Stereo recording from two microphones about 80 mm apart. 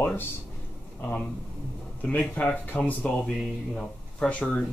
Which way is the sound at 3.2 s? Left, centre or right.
Centre.